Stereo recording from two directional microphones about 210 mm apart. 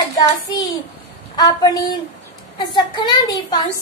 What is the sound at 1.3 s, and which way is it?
A woman's voice, 20° left (ahead or behind).